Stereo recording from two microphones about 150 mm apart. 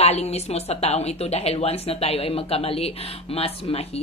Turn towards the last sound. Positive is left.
turn(degrees=40)  # may be behind; listen again after turning